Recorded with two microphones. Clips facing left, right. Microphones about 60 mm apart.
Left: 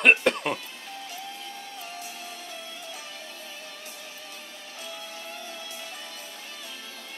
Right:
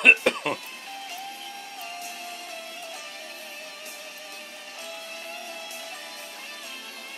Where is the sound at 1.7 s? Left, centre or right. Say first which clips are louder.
Right 2 dB; right.